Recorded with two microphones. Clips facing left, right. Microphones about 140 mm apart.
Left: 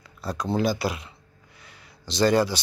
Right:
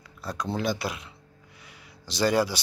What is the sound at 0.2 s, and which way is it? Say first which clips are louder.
Speech: left 5 dB; centre (ahead or behind).